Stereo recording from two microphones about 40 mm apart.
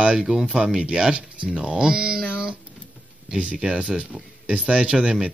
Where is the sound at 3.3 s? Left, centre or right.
Right.